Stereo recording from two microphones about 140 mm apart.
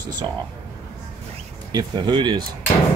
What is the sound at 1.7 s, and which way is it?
Speech, 30° right (ahead or behind).